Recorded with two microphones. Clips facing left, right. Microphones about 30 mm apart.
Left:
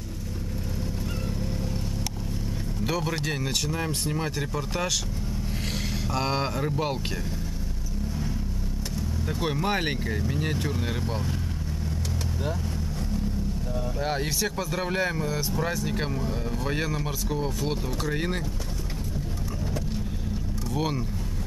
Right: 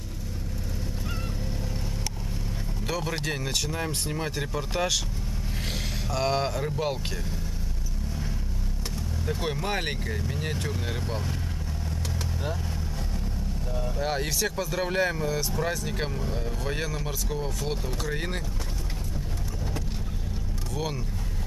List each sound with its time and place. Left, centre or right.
2.8 s speech: centre
6.0 s speech: centre
9.3 s speech: centre
13.7 s speech: centre
20.7 s speech: centre